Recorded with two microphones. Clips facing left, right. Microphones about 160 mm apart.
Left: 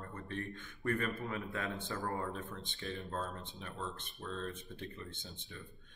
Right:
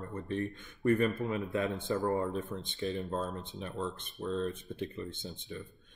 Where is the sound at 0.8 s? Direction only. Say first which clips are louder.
Right 8 dB; 20° right (ahead or behind).